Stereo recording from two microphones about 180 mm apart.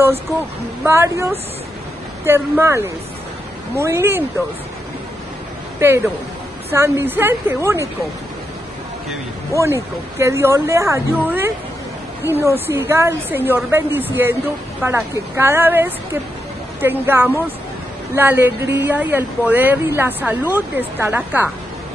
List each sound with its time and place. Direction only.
0.8 s speech: 15° right (ahead or behind)
5.8 s speech: 15° right (ahead or behind)
9.5 s speech: 15° right (ahead or behind)